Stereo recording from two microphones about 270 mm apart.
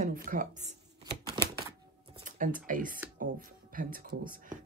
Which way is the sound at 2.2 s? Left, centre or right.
Right.